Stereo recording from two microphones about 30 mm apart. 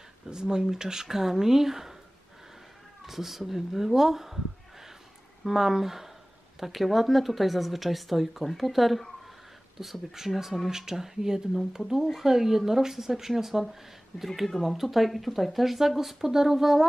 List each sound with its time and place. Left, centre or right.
0.3 s speech: right
1.0 s speech: centre
3.1 s speech: centre
5.4 s speech: centre
10.7 s speech: centre